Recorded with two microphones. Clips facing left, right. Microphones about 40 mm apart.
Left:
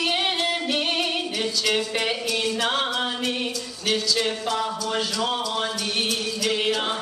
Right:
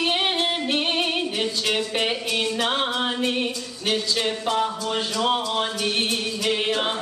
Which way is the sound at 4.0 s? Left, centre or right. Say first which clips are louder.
Even; right.